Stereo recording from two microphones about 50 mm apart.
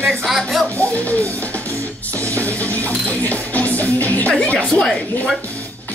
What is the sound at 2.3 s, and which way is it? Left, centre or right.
Music, left.